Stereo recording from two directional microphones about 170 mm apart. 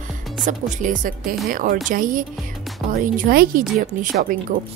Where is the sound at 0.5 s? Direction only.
50° right (ahead or behind).